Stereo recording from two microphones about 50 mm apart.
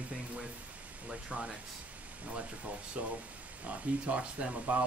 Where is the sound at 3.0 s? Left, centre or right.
Right.